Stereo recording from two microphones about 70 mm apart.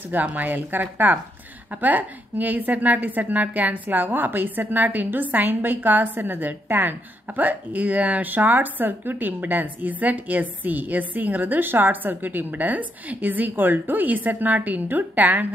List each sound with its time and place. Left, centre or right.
0.1 s a woman's voice: right